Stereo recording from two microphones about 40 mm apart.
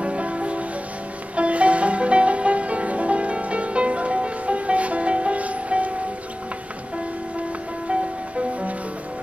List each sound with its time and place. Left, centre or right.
0.0 s music: right
7.9 s music: right